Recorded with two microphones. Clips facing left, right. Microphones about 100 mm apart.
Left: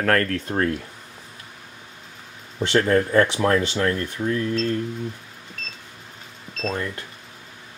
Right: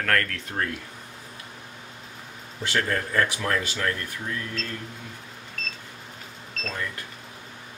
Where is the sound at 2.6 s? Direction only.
30° left (ahead or behind).